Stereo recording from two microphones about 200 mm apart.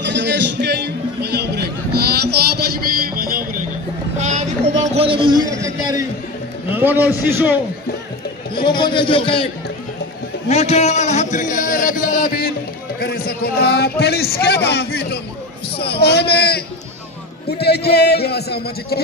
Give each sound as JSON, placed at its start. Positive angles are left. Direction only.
{"t": 0.0, "sound": "music", "side_deg": -60}
{"t": 4.2, "sound": "a sound", "side_deg": -35}
{"t": 6.7, "sound": "a man's voice", "side_deg": -10}
{"t": 8.5, "sound": "a man's voice", "side_deg": 25}
{"t": 10.5, "sound": "a man's voice", "side_deg": 35}